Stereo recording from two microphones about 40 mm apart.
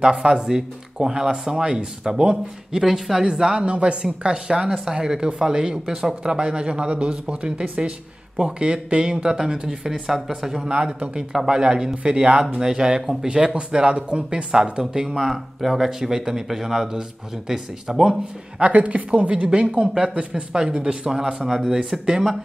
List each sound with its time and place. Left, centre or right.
0.0 s a man's voice: right
2.8 s a man's voice: centre
4.6 s speech: centre
6.2 s a man's voice: right
10.7 s a man's voice: right
18.6 s a man's voice: right; by 21.7 s centre